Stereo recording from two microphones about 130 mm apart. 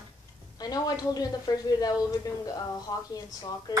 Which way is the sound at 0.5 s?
30° left (ahead or behind).